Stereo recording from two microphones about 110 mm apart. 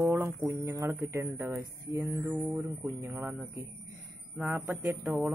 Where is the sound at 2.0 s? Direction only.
20° right (ahead or behind).